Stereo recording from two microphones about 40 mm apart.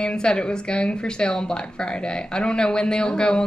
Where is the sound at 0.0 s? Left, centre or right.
Left.